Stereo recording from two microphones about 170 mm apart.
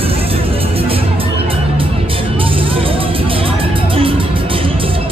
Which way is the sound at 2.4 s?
30° right (ahead or behind).